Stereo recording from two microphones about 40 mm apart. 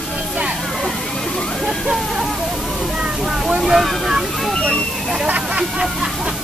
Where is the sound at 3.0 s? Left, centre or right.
Centre.